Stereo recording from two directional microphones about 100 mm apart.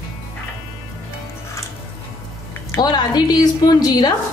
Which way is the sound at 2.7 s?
40° left (ahead or behind).